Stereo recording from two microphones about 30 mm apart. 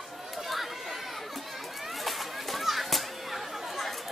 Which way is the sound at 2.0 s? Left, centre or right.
Centre.